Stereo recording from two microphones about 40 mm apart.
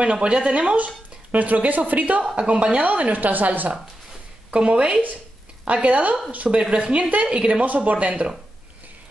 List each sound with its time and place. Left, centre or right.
0.0 s speech: right
2.3 s speech: right
4.5 s speech: right